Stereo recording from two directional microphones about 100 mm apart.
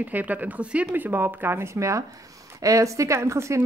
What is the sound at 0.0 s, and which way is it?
Speech, 15° right (ahead or behind).